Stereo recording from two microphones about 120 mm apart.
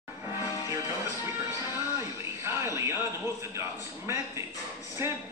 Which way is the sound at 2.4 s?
25° right (ahead or behind).